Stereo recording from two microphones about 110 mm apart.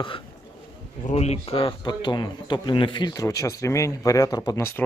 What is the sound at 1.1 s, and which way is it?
Speech, 75° left (ahead or behind).